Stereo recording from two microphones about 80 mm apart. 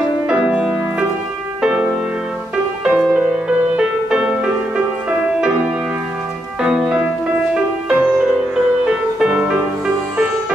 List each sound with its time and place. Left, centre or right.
0.3 s music: centre